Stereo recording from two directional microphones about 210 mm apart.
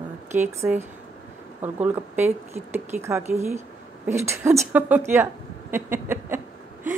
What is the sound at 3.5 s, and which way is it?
A woman's voice, 10° right (ahead or behind).